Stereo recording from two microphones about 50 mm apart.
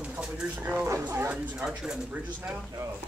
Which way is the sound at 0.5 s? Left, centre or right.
Right.